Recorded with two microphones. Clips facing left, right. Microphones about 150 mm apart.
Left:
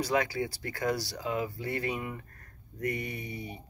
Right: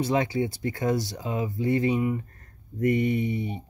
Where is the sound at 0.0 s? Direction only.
25° right (ahead or behind).